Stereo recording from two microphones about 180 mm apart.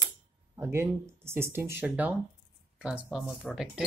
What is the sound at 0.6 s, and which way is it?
Speech, 15° right (ahead or behind).